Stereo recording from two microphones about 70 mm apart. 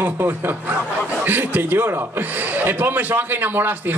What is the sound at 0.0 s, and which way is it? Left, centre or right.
A man's voice, right.